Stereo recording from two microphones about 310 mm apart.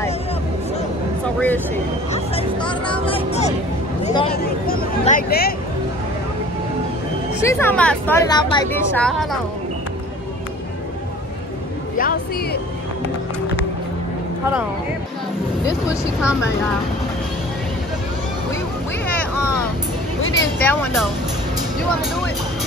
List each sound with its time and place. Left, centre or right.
1.2 s a sound: centre
2.1 s music: centre
4.0 s a sound: centre
4.3 s speech: left
7.4 s speech: centre
20.3 s speech: centre